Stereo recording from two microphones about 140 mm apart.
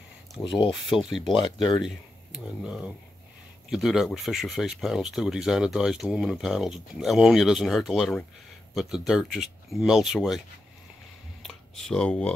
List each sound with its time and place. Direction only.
0.4 s speech: 35° left (ahead or behind)
0.7 s speech: centre (ahead or behind)
1.4 s speech: 30° left (ahead or behind)
2.3 s speech: 5° right (ahead or behind)
11.4 s speech: 5° left (ahead or behind)